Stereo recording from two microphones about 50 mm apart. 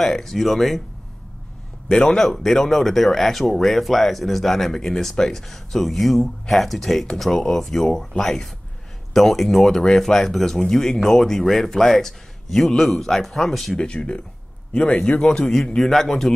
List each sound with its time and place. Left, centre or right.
0.0 s speech: centre
1.9 s speech: centre
13.7 s a man's voice: left; by 16.3 s centre